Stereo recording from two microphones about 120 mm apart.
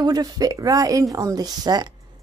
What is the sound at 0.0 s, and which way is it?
Speech, 35° right (ahead or behind).